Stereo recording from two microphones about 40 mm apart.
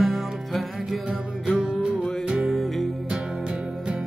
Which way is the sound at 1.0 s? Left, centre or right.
Centre.